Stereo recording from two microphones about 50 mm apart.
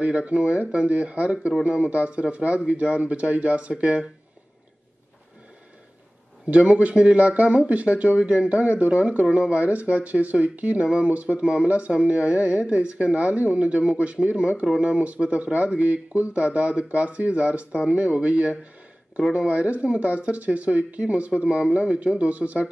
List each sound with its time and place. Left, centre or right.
0.0 s speech: right
6.4 s speech: right